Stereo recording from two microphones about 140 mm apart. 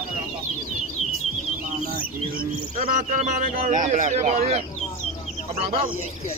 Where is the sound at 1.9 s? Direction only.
90° right.